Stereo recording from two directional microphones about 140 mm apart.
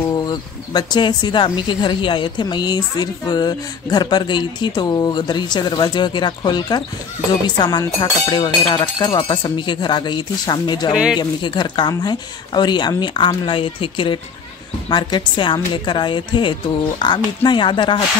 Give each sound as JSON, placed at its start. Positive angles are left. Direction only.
{"t": 0.1, "sound": "speech", "side_deg": 30}